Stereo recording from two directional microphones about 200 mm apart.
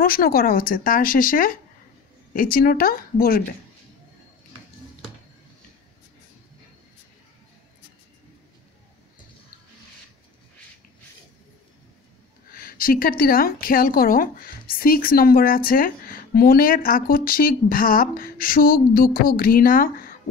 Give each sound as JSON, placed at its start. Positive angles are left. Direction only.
{"t": 0.0, "sound": "a woman's voice", "side_deg": 45}
{"t": 12.5, "sound": "a woman's voice", "side_deg": 45}